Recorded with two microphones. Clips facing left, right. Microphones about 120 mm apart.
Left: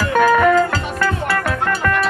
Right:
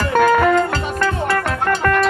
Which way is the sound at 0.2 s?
25° right (ahead or behind).